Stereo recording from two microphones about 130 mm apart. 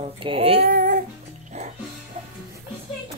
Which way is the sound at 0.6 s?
90° right.